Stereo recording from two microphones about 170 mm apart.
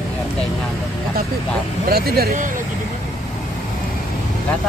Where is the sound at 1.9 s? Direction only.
65° right (ahead or behind).